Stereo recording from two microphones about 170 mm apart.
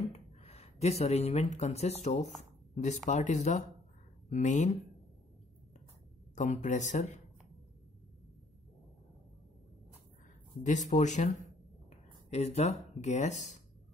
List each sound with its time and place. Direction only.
0.1 s speech: 40° left (ahead or behind)
6.3 s speech: 45° left (ahead or behind)
10.6 s speech: 45° left (ahead or behind)